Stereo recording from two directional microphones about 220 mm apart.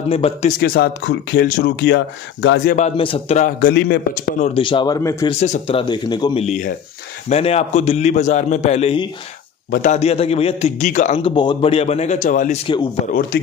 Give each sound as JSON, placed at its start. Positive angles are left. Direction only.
{"t": 0.1, "sound": "a man's voice", "side_deg": 25}
{"t": 0.6, "sound": "speech", "side_deg": 45}
{"t": 3.0, "sound": "a man's voice", "side_deg": 25}
{"t": 3.6, "sound": "speech", "side_deg": 45}
{"t": 4.6, "sound": "speech", "side_deg": 20}
{"t": 5.4, "sound": "a man's voice", "side_deg": 30}
{"t": 6.4, "sound": "a man's voice", "side_deg": 35}
{"t": 9.7, "sound": "a man's voice", "side_deg": 35}